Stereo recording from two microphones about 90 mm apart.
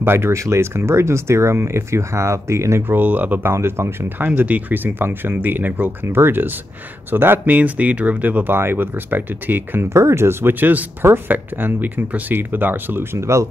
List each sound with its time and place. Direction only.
0.0 s speech: 25° right (ahead or behind)
3.0 s speech: 20° right (ahead or behind)
3.4 s speech: 30° right (ahead or behind)
4.3 s speech: 15° right (ahead or behind)